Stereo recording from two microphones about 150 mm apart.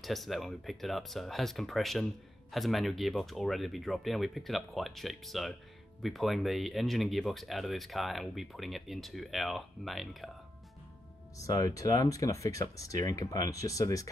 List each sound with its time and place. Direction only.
0.0 s speech: centre (ahead or behind)
11.3 s speech: 25° left (ahead or behind)